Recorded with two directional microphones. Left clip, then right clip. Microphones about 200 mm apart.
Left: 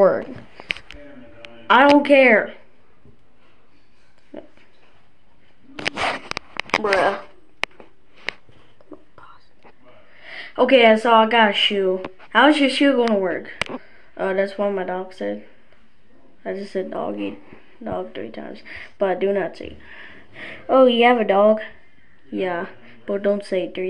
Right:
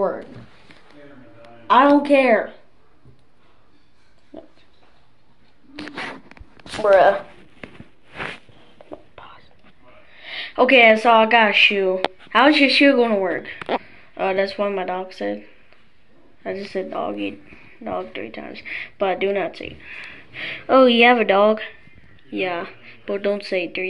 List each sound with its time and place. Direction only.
1.7 s speech: 15° left (ahead or behind)
6.8 s speech: 35° left (ahead or behind)
10.1 s speech: 5° left (ahead or behind)
16.4 s speech: 10° left (ahead or behind)